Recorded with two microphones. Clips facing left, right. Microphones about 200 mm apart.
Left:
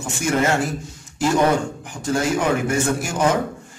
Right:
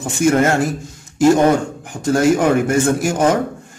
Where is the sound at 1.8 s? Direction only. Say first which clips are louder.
Right 6 dB; 50° right (ahead or behind).